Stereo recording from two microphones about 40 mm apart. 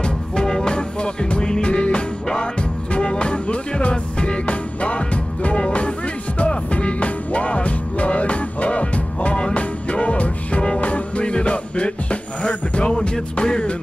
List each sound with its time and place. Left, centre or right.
0.0 s music: centre